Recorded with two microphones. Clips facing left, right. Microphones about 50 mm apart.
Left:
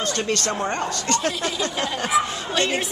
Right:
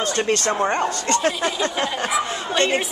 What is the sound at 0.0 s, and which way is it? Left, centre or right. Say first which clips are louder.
Speech: right 3 dB; right.